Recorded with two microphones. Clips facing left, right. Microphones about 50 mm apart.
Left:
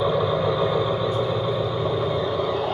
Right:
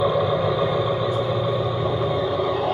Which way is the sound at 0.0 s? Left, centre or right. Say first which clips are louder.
Right 1 dB; centre.